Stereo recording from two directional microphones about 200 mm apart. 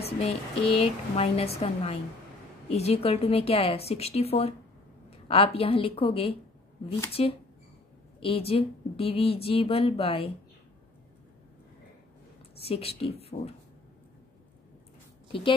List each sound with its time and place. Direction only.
0.2 s a woman's voice: 30° left (ahead or behind)
12.5 s a woman's voice: 30° left (ahead or behind)